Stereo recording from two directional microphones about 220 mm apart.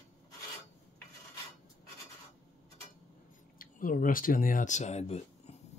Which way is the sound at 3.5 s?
40° left (ahead or behind).